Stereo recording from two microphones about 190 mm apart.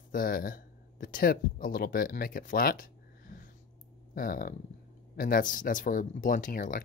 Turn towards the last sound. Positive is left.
turn(degrees=45)  # may be behind; listen again after turning